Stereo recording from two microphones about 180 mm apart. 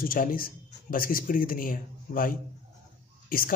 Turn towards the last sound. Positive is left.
turn(degrees=50)  # may be behind; listen again after turning